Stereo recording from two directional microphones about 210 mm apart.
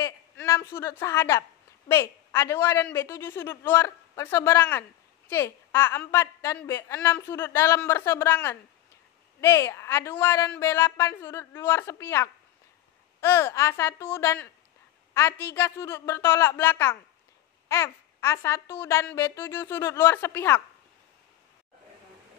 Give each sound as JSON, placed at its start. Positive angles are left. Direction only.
{"t": 0.0, "sound": "a woman's voice", "side_deg": 15}